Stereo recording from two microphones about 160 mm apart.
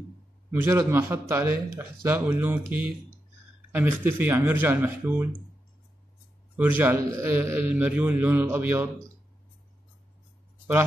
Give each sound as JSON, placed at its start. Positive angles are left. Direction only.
{"t": 0.5, "sound": "a man's voice", "side_deg": -15}
{"t": 6.5, "sound": "a man's voice", "side_deg": -10}